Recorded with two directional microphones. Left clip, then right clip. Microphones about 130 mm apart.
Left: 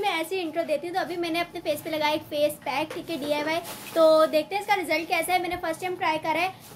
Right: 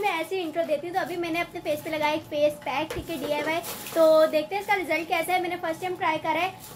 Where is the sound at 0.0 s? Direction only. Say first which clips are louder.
Even; 25° left (ahead or behind).